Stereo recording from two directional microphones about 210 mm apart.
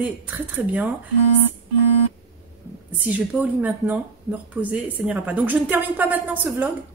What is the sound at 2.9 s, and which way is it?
Speech, 5° right (ahead or behind).